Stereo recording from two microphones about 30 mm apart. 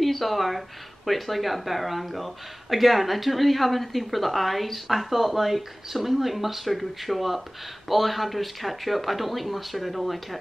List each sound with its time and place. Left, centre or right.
0.0 s speech: centre